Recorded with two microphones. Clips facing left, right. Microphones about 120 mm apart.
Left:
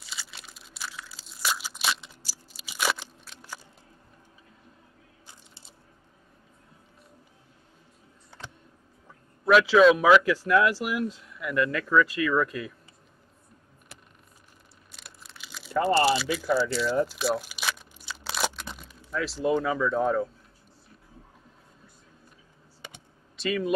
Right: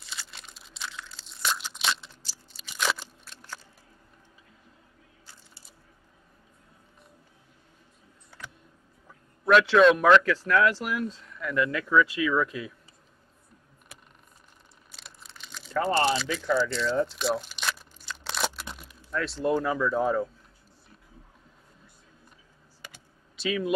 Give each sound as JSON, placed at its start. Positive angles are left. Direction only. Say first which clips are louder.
{"t": 0.0, "sound": "crunch", "louder": "even", "side_deg": 0}
{"t": 5.2, "sound": "a sound", "louder": "left 1 dB", "side_deg": 20}
{"t": 9.4, "sound": "a man's voice", "louder": "left 1 dB", "side_deg": 0}
{"t": 15.0, "sound": "crumpling", "louder": "even", "side_deg": 5}
{"t": 22.8, "sound": "computer keyboard", "louder": "left 2 dB", "side_deg": 20}
{"t": 23.3, "sound": "speech", "louder": "left 1 dB", "side_deg": 0}